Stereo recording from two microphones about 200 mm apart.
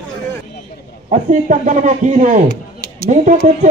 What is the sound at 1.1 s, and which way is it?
Speech, 40° right (ahead or behind).